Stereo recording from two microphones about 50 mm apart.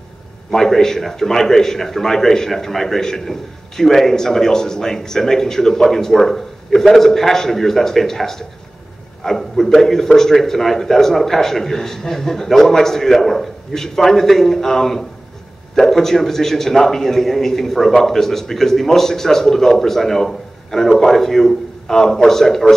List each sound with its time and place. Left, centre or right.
0.5 s a man's voice: centre